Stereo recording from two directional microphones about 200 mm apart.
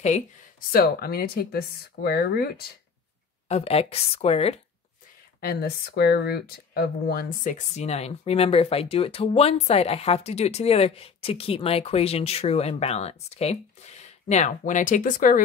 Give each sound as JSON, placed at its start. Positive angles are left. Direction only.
{"t": 0.7, "sound": "speech", "side_deg": 50}
{"t": 3.4, "sound": "speech", "side_deg": 30}
{"t": 5.4, "sound": "speech", "side_deg": 50}